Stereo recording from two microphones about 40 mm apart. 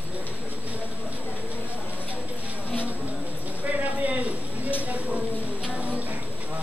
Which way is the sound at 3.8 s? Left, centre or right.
Right.